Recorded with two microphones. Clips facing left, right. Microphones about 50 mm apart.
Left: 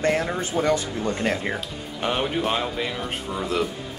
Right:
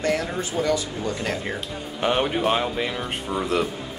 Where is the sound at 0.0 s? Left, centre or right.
Left.